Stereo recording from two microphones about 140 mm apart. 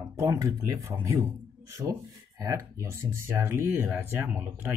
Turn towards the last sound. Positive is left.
turn(degrees=-15)  # may be behind; listen again after turning